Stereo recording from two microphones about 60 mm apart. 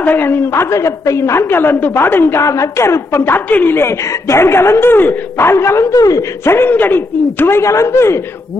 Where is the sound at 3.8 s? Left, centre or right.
Left.